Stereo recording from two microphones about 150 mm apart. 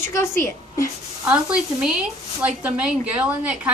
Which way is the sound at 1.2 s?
5° right (ahead or behind).